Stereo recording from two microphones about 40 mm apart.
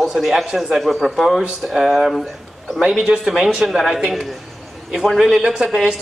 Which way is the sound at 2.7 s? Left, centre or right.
Right.